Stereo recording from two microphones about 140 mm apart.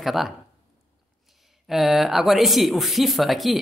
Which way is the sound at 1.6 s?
Centre (ahead or behind).